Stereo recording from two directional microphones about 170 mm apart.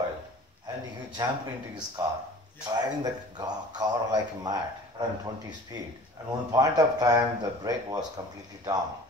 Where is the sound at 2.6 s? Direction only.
25° right (ahead or behind).